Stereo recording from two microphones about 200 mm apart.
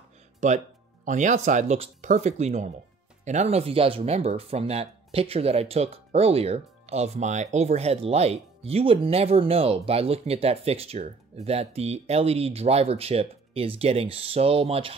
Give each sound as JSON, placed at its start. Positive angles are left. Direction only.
{"t": 0.4, "sound": "speech", "side_deg": -35}